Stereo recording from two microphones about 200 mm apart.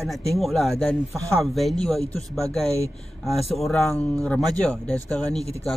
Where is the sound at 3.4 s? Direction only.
30° left (ahead or behind).